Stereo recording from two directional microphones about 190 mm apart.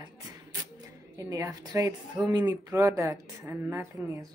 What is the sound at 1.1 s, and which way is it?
Speech, 15° right (ahead or behind).